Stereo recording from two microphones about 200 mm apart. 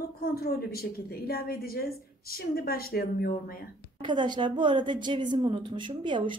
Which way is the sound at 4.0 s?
25° right (ahead or behind).